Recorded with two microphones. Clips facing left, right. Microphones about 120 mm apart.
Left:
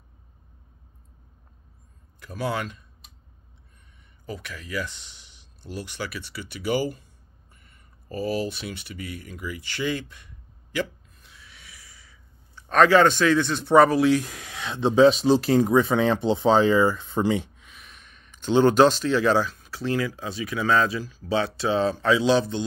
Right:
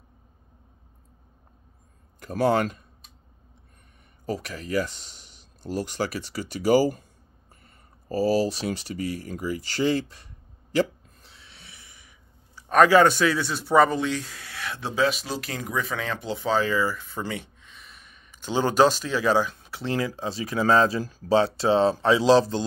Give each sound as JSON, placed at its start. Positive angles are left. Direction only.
{"t": 2.1, "sound": "a man's voice", "side_deg": -45}
{"t": 4.3, "sound": "speech", "side_deg": -40}
{"t": 7.6, "sound": "a sound", "side_deg": -35}
{"t": 12.5, "sound": "a man's voice", "side_deg": -10}
{"t": 17.6, "sound": "a sound", "side_deg": 0}
{"t": 19.5, "sound": "speech", "side_deg": -25}